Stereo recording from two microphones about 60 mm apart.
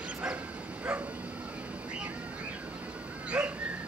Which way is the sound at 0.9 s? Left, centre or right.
Centre.